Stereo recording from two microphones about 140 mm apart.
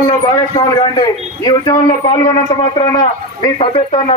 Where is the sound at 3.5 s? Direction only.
45° left (ahead or behind).